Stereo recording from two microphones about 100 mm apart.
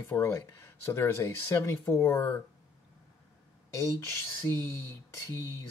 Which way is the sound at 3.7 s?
25° left (ahead or behind).